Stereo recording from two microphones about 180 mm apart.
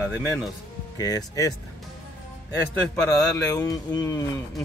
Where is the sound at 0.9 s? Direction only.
20° left (ahead or behind).